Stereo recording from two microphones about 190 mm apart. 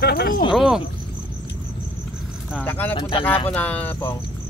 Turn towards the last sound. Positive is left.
turn(degrees=10)  # may be behind; listen again after turning